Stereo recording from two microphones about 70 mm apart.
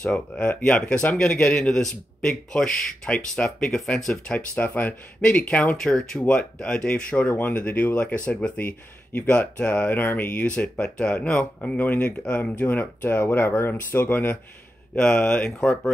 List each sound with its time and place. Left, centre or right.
0.0 s speech: centre
5.8 s speech: centre
7.2 s speech: left
15.0 s speech: centre